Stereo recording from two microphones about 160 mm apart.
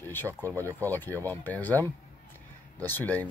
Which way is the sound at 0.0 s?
15° left (ahead or behind).